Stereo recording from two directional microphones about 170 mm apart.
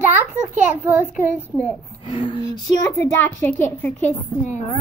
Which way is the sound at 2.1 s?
30° left (ahead or behind).